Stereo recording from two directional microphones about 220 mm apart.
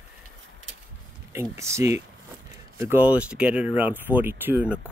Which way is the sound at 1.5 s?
15° right (ahead or behind).